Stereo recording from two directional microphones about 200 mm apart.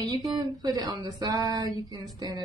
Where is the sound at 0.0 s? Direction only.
20° right (ahead or behind).